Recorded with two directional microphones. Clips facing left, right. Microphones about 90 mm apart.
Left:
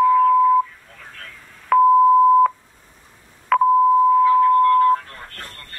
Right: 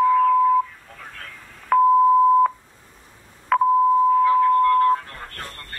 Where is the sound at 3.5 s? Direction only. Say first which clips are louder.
Left 2 dB; 25° right (ahead or behind).